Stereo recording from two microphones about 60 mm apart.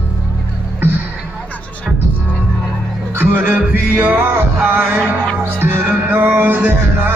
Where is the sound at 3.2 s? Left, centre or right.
Right.